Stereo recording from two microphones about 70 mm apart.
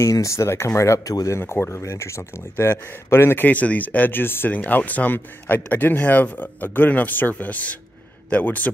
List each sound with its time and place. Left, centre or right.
0.0 s speech: left
1.4 s speech: left